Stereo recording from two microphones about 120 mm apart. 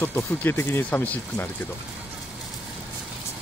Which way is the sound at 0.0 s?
15° left (ahead or behind).